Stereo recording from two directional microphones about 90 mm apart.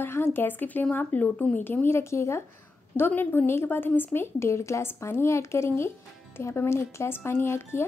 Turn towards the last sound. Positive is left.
turn(degrees=30)  # may be behind; listen again after turning